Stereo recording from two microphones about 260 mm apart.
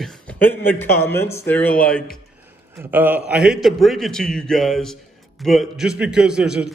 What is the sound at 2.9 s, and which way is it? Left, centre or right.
A man's voice, centre.